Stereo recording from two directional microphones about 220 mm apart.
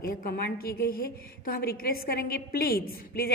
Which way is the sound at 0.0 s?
40° left (ahead or behind).